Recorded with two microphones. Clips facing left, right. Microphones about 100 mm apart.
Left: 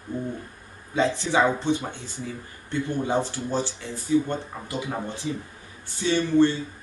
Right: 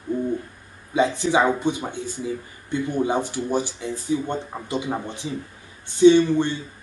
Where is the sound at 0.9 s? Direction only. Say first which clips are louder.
Right 3 dB; 15° right (ahead or behind).